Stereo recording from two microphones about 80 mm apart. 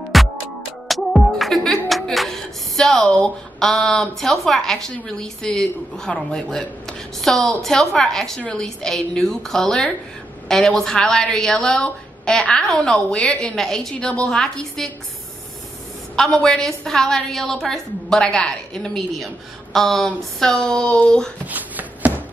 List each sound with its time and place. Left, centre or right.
0.1 s music: centre
3.1 s a woman's voice: centre
16.2 s a woman's voice: centre
21.5 s a sound: right